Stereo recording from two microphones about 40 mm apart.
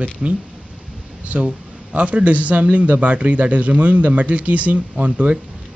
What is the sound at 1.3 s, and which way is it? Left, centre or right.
A man's voice, right.